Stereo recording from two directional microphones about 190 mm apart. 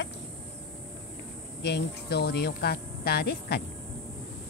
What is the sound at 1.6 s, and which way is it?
Speech, 60° left (ahead or behind).